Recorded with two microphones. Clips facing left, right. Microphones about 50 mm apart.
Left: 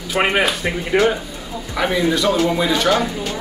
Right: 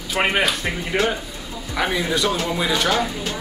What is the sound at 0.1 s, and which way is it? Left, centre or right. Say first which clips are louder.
Speech: left 3 dB; centre.